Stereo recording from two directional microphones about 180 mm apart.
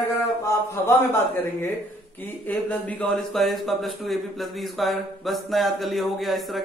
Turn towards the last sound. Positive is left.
turn(degrees=0)  # may be behind; listen again after turning